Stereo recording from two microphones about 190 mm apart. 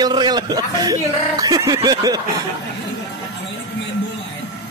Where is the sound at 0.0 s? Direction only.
20° right (ahead or behind).